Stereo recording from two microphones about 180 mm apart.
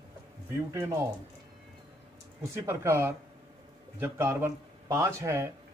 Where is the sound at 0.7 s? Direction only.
15° right (ahead or behind).